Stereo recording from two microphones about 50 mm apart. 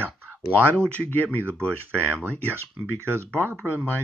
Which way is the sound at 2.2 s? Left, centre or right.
Right.